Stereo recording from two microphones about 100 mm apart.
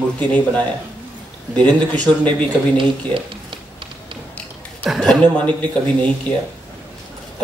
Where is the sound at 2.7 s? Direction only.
60° right (ahead or behind).